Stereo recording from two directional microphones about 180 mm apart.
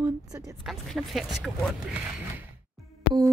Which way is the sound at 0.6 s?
Centre (ahead or behind).